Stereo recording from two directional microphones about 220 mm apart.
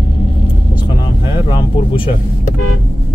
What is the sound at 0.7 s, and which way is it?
Vehicle, 20° left (ahead or behind).